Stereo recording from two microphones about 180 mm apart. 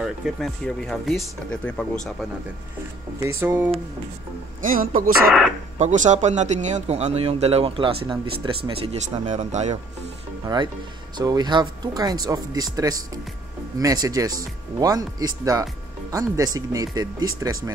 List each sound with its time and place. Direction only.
0.0 s speech: centre (ahead or behind)
3.3 s speech: 10° right (ahead or behind)
4.6 s speech: 50° right (ahead or behind); by 8.9 s 30° right (ahead or behind)
9.2 s speech: 40° right (ahead or behind)
10.4 s speech: 25° right (ahead or behind)